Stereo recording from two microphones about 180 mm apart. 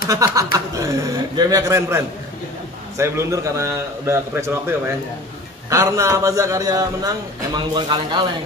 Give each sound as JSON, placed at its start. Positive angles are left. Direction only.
{"t": 0.1, "sound": "a man's voice", "side_deg": -20}